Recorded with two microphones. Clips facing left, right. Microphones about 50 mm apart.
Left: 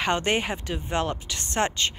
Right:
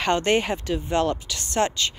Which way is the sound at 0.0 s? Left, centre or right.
Centre.